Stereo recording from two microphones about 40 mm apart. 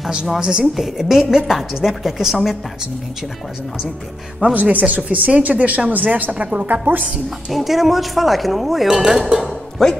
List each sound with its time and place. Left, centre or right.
0.4 s a woman's voice: centre
0.7 s a woman's voice: centre
4.6 s a woman's voice: right
7.5 s speech: centre
9.8 s speech: centre